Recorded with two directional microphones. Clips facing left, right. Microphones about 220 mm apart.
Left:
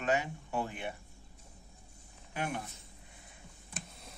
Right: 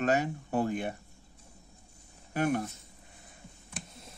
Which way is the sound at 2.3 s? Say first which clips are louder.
Right 9 dB; 45° right (ahead or behind).